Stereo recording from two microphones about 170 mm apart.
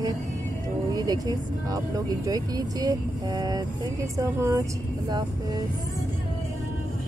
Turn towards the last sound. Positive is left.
turn(degrees=-25)  # may be behind; listen again after turning